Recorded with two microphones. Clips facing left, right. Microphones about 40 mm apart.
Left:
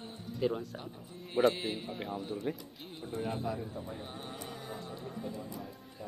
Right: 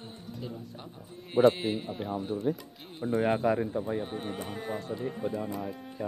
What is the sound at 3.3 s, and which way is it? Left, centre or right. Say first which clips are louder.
Speech: right 10 dB; right.